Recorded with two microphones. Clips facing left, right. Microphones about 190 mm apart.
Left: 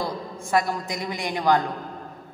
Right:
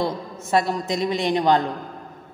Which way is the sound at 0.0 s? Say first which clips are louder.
Right 4 dB; 25° right (ahead or behind).